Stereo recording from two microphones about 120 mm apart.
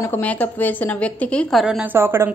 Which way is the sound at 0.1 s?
15° left (ahead or behind).